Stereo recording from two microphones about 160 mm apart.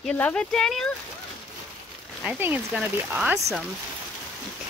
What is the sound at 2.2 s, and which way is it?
Speech, 10° right (ahead or behind).